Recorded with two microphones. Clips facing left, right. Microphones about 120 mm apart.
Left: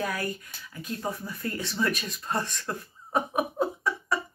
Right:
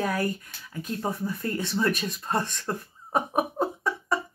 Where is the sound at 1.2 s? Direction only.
30° right (ahead or behind).